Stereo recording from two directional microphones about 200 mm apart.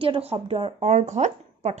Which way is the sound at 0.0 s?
30° right (ahead or behind).